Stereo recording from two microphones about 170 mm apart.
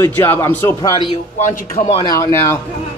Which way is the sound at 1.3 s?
45° left (ahead or behind).